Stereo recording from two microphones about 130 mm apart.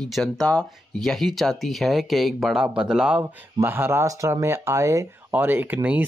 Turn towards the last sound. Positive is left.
turn(degrees=-15)  # may be behind; listen again after turning